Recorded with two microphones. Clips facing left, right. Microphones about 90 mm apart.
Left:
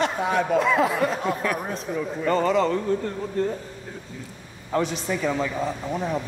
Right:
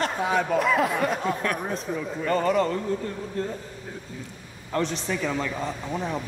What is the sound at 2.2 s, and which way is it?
Speech, 25° left (ahead or behind).